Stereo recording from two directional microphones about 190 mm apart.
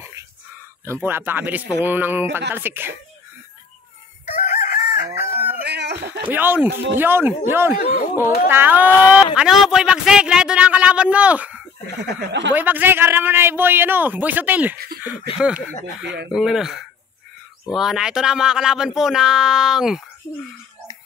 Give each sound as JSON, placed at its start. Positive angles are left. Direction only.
{"t": 1.0, "sound": "a man's voice", "side_deg": -10}
{"t": 4.3, "sound": "chicken", "side_deg": 40}
{"t": 5.6, "sound": "a sound", "side_deg": -65}
{"t": 6.2, "sound": "a man's voice", "side_deg": -10}
{"t": 12.0, "sound": "speech", "side_deg": -60}
{"t": 12.5, "sound": "a man's voice", "side_deg": -10}